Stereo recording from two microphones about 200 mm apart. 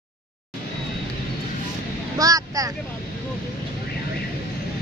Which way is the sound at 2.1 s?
20° right (ahead or behind).